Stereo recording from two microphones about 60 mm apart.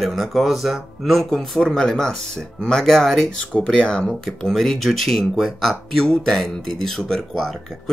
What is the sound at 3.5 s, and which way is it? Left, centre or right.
Speech, centre.